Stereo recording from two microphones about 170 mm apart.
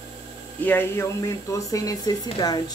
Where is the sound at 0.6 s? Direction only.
10° left (ahead or behind).